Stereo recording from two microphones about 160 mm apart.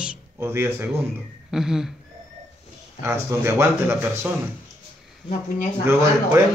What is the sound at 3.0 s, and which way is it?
Speech, 15° right (ahead or behind).